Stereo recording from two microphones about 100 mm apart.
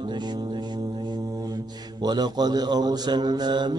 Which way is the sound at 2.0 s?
45° right (ahead or behind).